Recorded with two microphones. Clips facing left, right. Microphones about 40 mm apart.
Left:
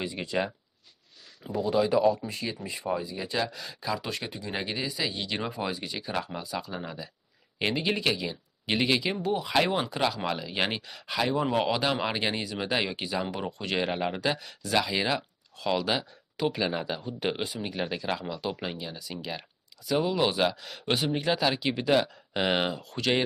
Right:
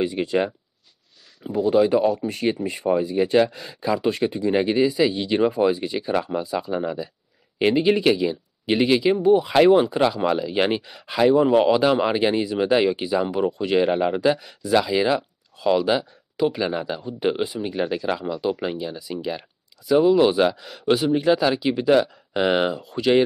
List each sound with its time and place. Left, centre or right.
0.0 s speech: right
1.6 s speech: right
2.2 s speech: right
3.6 s speech: right
6.7 s speech: centre
10.8 s speech: centre
14.5 s speech: centre
14.8 s speech: centre
22.8 s speech: centre